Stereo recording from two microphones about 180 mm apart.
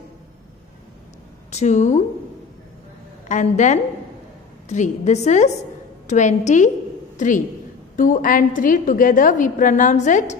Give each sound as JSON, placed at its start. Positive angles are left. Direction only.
{"t": 1.5, "sound": "a woman's voice", "side_deg": 40}
{"t": 3.3, "sound": "a woman's voice", "side_deg": 40}